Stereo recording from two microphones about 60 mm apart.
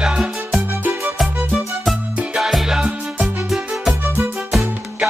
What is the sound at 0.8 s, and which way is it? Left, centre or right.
Music, right.